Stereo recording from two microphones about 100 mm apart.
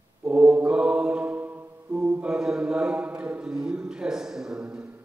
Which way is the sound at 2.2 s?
10° right (ahead or behind).